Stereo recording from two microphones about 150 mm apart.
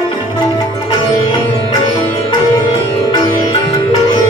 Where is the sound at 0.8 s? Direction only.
40° left (ahead or behind).